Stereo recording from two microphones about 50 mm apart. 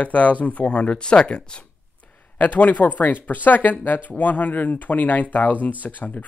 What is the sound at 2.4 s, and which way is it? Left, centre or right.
Speech, left.